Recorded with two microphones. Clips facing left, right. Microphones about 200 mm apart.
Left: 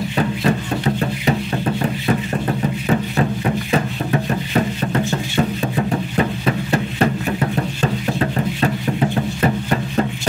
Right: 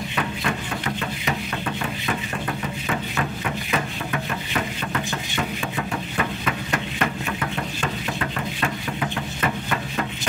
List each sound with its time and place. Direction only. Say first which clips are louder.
0.1 s music: left 8 dB; 35° left (ahead or behind)